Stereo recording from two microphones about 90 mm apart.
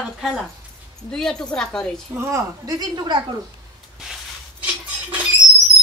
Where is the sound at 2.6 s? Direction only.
50° right (ahead or behind).